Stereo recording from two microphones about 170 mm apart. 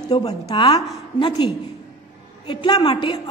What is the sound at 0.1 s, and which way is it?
Speech, 35° left (ahead or behind).